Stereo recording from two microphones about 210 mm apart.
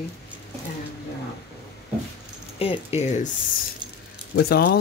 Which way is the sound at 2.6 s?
30° left (ahead or behind).